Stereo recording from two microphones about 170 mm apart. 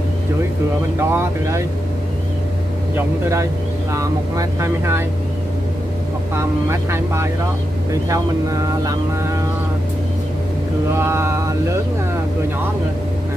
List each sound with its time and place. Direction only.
0.9 s speech: 15° right (ahead or behind)
3.9 s speech: 20° right (ahead or behind)
6.3 s speech: 15° right (ahead or behind)
11.0 s mantra: 15° right (ahead or behind)